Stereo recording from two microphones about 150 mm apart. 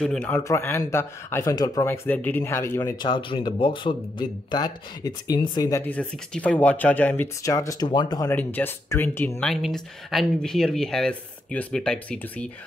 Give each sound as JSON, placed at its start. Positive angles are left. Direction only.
{"t": 0.0, "sound": "speech", "side_deg": 5}
{"t": 0.4, "sound": "speech", "side_deg": 20}
{"t": 2.0, "sound": "speech", "side_deg": 10}
{"t": 3.0, "sound": "speech", "side_deg": 35}
{"t": 5.9, "sound": "speech", "side_deg": 10}
{"t": 8.3, "sound": "speech", "side_deg": 10}
{"t": 9.4, "sound": "speech", "side_deg": 0}